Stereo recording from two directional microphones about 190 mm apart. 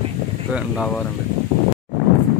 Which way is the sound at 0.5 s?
Centre (ahead or behind).